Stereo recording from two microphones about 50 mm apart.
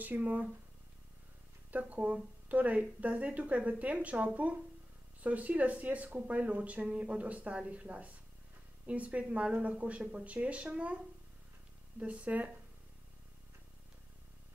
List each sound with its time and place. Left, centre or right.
0.0 s speech: right
1.7 s speech: right
12.0 s speech: right